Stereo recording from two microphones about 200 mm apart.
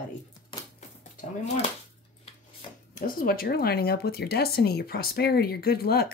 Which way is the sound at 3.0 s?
50° left (ahead or behind).